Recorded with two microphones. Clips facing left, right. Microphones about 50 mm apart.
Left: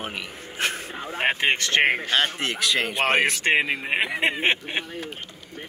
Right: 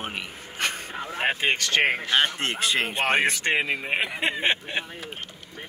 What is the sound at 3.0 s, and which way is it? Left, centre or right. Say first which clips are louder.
Speech: left 2 dB; left.